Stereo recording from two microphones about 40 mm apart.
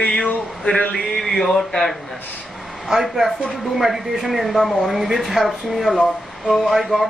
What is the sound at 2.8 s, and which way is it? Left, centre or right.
Speech, centre.